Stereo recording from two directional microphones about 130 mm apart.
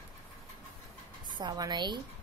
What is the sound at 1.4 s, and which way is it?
Speech, 30° right (ahead or behind).